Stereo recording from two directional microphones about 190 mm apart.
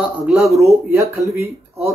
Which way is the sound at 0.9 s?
15° right (ahead or behind).